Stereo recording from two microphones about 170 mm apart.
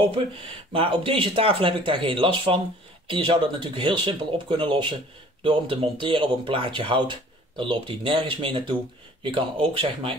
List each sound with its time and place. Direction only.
0.7 s speech: 30° right (ahead or behind)